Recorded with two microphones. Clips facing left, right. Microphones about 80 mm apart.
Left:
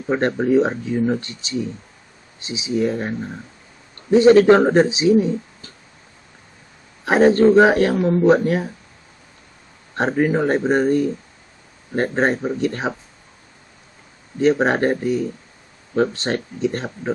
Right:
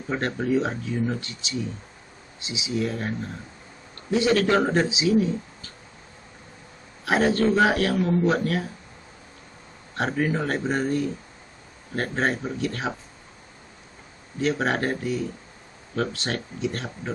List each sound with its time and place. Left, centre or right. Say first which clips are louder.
0.1 s a man's voice: left 7 dB; left
7.1 s a man's voice: left 8 dB; left
9.9 s a man's voice: left 6 dB; left
14.4 s speech: left 8 dB; left